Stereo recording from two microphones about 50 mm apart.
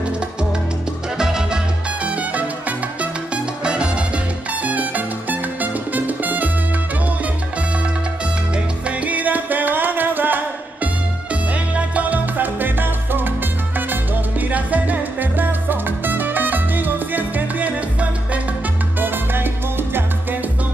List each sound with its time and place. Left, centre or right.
1.1 s music: centre
2.0 s music: right
3.6 s music: centre
4.6 s music: right
8.8 s music: right
11.7 s music: right
18.9 s salsa music: right